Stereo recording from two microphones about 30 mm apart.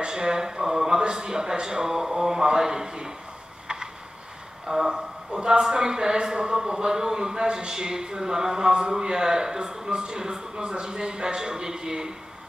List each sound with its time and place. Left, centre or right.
0.0 s speech: right
3.6 s a sound: right
5.4 s speech: right